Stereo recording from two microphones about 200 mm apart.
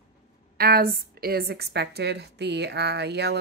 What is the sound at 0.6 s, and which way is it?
A woman's voice, 50° right (ahead or behind).